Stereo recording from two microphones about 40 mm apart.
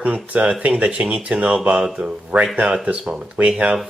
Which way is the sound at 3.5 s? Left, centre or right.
Right.